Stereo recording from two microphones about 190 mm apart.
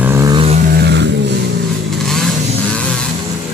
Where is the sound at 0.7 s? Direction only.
60° right (ahead or behind).